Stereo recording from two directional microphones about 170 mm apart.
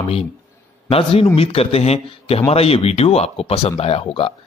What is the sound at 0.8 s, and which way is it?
Speech, 35° left (ahead or behind).